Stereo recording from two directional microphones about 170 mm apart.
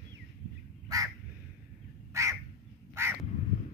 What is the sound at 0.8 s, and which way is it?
Crow, 20° right (ahead or behind).